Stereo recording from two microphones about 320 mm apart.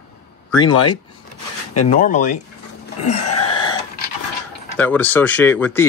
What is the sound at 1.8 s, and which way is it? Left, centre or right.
Speech, left.